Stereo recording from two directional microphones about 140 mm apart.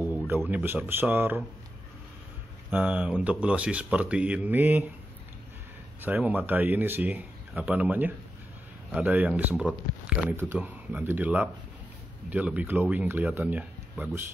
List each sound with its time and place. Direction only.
0.5 s speech: 15° right (ahead or behind)
2.7 s speech: 10° right (ahead or behind)
5.9 s speech: 15° right (ahead or behind)